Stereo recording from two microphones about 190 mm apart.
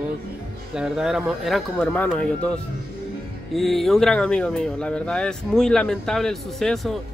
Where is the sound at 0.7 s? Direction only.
5° right (ahead or behind).